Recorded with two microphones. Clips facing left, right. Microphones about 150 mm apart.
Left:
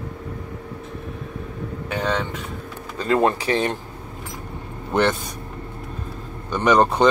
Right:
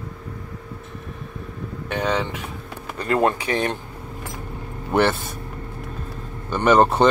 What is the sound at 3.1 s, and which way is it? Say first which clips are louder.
Speech: left 1 dB; 20° left (ahead or behind).